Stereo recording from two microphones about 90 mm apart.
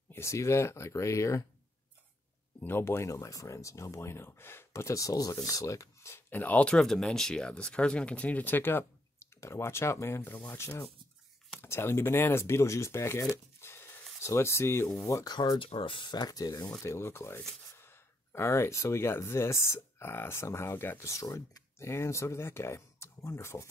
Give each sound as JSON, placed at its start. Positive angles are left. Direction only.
{"t": 0.1, "sound": "speech", "side_deg": 35}
{"t": 2.6, "sound": "speech", "side_deg": 25}
{"t": 13.6, "sound": "a sound", "side_deg": 25}
{"t": 14.2, "sound": "speech", "side_deg": 30}
{"t": 15.4, "sound": "speech", "side_deg": 80}
{"t": 16.8, "sound": "speech", "side_deg": 30}